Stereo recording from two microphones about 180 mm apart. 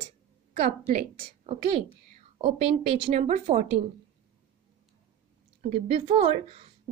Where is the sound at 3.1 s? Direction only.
40° right (ahead or behind).